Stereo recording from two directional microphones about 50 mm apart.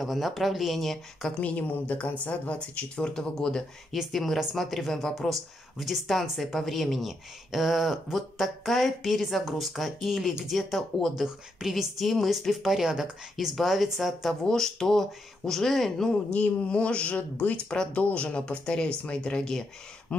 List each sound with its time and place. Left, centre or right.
0.0 s speech: centre
1.4 s a woman's voice: left
3.0 s speech: centre
3.9 s speech: centre
14.4 s speech: centre
16.3 s speech: left